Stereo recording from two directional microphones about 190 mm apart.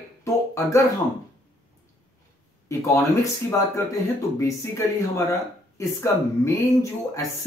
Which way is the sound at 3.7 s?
15° left (ahead or behind).